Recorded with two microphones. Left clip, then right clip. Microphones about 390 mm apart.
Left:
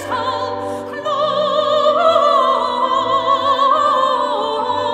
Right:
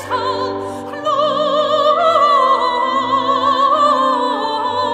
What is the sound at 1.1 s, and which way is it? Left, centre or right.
Opera, right.